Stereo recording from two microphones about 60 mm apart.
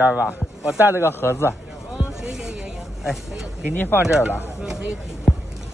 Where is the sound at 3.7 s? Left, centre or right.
Left.